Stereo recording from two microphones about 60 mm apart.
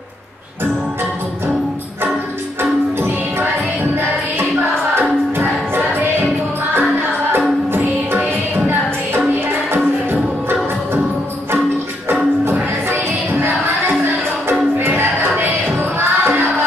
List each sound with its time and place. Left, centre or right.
7.7 s music: right
12.9 s music: right
15.0 s music: right